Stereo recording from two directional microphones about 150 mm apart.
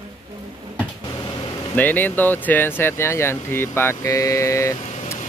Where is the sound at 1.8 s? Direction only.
10° left (ahead or behind).